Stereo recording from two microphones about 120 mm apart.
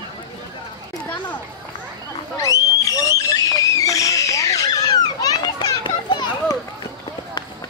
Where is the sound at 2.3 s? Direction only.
25° left (ahead or behind).